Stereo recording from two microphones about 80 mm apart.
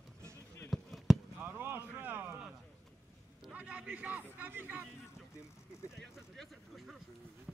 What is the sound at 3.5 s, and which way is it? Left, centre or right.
A man's voice, centre.